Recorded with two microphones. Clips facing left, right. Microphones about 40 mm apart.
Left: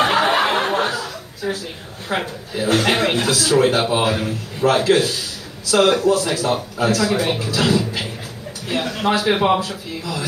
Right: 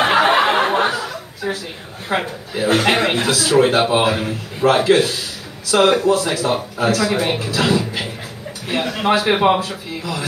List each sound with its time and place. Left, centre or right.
0.0 s snicker: right
0.5 s chuckle: right
2.0 s a man's voice: right